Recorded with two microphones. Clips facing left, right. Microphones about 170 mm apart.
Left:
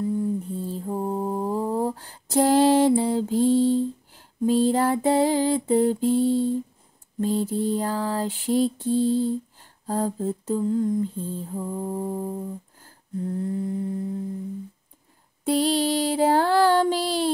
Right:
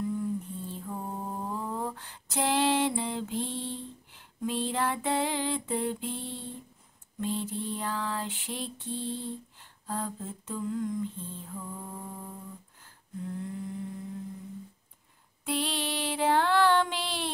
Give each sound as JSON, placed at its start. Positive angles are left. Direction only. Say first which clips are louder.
{"t": 0.0, "sound": "mantra", "louder": "left 6 dB", "side_deg": 35}
{"t": 15.4, "sound": "mantra", "louder": "left 11 dB", "side_deg": 40}